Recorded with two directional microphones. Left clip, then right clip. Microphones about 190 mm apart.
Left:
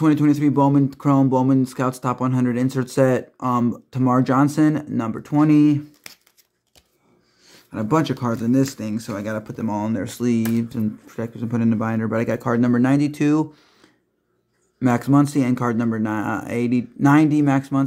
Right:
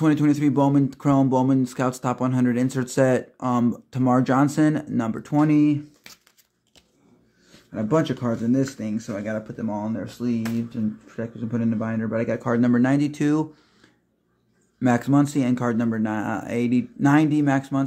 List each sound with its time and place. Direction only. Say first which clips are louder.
0.0 s speech: left 3 dB; 5° left (ahead or behind)
7.7 s speech: left 2 dB; 15° left (ahead or behind); by 10.8 s 30° left (ahead or behind)
11.1 s speech: left 3 dB; 20° left (ahead or behind)
14.8 s speech: left 2 dB; 10° left (ahead or behind)